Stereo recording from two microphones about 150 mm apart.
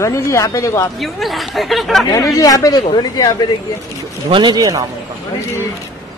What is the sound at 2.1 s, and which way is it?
Speech, 20° left (ahead or behind).